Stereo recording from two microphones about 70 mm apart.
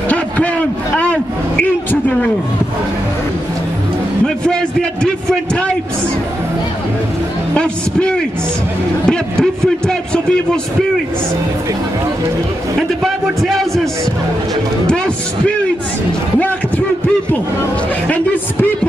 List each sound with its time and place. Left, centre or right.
0.1 s a sound: centre
5.0 s a man's voice: centre
7.5 s a man's voice: centre
13.0 s music: centre
16.3 s a sound: left
18.0 s speech: left